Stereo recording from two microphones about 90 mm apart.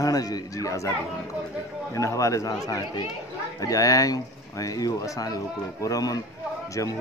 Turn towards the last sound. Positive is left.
turn(degrees=40)  # may be behind; listen again after turning